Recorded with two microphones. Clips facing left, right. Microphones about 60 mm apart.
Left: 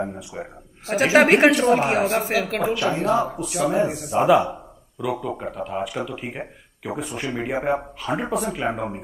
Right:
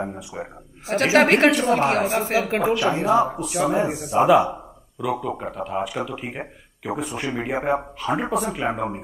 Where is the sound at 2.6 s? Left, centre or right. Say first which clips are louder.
Right 1 dB; centre.